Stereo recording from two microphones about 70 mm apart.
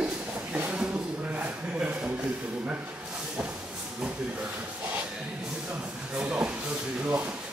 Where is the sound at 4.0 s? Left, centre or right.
Right.